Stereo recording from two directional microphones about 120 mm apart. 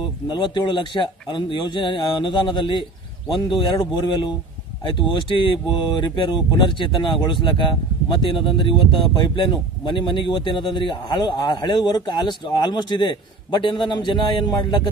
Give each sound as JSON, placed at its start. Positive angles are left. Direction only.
{"t": 0.3, "sound": "speech", "side_deg": 40}
{"t": 4.9, "sound": "speech", "side_deg": 45}